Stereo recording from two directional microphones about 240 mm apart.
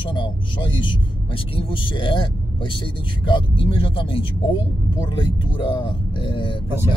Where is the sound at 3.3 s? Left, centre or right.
Left.